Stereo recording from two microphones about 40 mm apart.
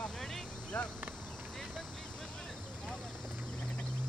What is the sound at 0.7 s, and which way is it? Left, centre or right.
Speech, left.